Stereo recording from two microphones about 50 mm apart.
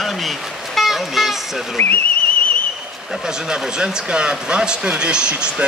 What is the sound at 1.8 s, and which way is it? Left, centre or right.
Speech, left.